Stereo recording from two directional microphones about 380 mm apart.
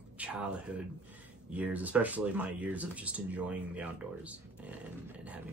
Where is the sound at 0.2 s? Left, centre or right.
Centre.